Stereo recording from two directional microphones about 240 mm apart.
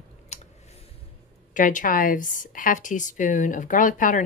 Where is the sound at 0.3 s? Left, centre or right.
Left.